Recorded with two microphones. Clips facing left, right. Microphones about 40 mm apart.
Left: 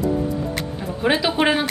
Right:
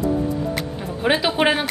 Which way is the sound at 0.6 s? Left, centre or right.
Centre.